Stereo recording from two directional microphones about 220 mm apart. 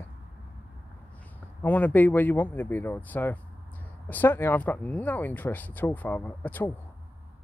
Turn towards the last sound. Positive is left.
turn(degrees=10)  # may be behind; listen again after turning